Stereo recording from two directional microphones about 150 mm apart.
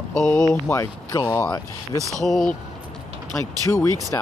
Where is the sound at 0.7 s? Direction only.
20° left (ahead or behind).